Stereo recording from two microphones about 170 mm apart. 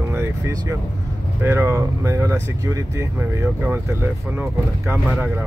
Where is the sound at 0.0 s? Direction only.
10° right (ahead or behind).